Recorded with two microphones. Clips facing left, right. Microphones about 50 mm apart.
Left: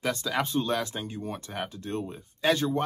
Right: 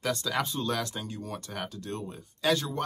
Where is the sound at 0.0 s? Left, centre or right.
Left.